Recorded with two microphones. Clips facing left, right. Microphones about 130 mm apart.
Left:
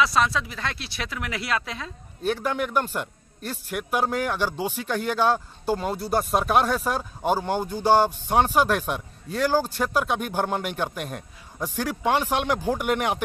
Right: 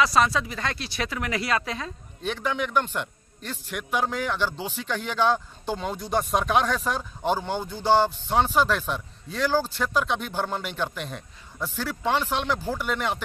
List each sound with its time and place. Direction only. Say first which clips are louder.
0.0 s speech: right 1 dB; centre (ahead or behind)
11.0 s a man's voice: left 2 dB; 50° left (ahead or behind)
11.6 s speech: left 3 dB; 15° left (ahead or behind)